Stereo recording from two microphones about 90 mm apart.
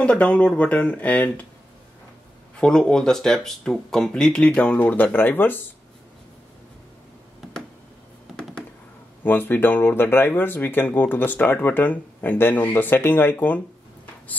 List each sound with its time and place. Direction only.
0.0 s speech: 15° left (ahead or behind)
2.5 s speech: 10° left (ahead or behind)
9.2 s speech: 20° left (ahead or behind)